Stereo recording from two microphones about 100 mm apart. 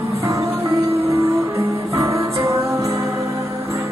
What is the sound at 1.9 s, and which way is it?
Music, 30° right (ahead or behind).